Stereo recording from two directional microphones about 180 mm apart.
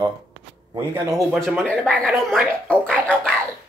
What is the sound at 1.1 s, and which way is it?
Speech, centre (ahead or behind).